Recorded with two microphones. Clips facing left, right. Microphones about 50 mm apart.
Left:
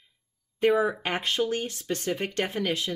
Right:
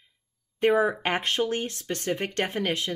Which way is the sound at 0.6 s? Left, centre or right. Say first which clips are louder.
Right 1 dB; right.